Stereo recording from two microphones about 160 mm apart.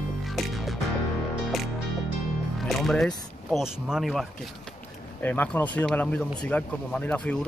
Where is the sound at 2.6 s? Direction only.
Centre (ahead or behind).